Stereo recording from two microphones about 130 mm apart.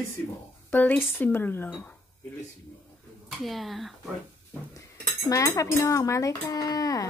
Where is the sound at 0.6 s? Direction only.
15° left (ahead or behind).